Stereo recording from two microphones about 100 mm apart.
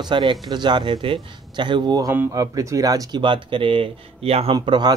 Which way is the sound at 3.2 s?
55° right (ahead or behind).